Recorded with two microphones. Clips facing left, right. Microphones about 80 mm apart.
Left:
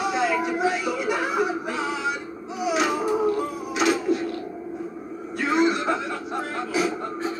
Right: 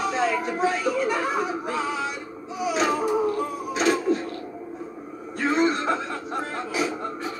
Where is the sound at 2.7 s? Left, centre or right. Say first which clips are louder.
Even; right.